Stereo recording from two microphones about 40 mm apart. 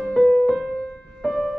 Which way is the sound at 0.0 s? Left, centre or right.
Centre.